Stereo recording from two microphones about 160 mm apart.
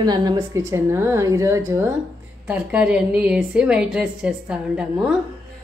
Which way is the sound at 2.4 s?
5° right (ahead or behind).